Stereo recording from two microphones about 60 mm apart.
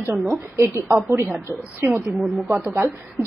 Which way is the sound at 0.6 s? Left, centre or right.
Right.